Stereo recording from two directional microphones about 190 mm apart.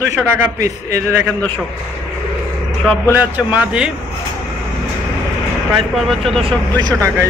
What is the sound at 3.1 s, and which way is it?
Speech, 10° right (ahead or behind).